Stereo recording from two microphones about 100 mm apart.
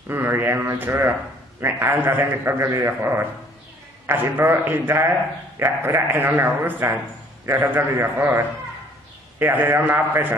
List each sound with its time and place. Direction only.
0.1 s a man's voice: 25° right (ahead or behind)